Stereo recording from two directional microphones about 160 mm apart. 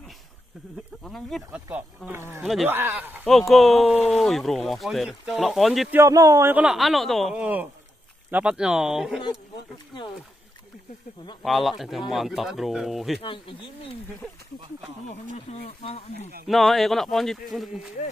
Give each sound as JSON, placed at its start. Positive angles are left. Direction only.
{"t": 1.0, "sound": "speech", "side_deg": 0}
{"t": 1.7, "sound": "speech", "side_deg": -10}
{"t": 2.4, "sound": "speech", "side_deg": 0}
{"t": 2.7, "sound": "speech", "side_deg": -15}
{"t": 3.3, "sound": "speech", "side_deg": 0}
{"t": 5.9, "sound": "speech", "side_deg": -20}
{"t": 6.5, "sound": "speech", "side_deg": -5}
{"t": 11.4, "sound": "speech", "side_deg": 0}
{"t": 13.2, "sound": "speech", "side_deg": 30}
{"t": 15.6, "sound": "speech", "side_deg": 40}
{"t": 16.4, "sound": "speech", "side_deg": 0}